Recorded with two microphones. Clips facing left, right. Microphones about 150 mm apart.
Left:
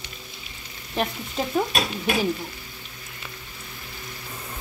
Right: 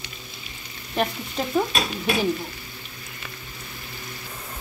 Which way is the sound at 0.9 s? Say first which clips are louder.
Right 1 dB; 5° left (ahead or behind).